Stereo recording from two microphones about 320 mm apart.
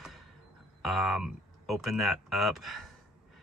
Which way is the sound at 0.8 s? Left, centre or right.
Centre.